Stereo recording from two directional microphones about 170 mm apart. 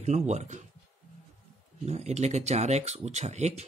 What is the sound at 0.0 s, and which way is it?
Speech, 40° right (ahead or behind).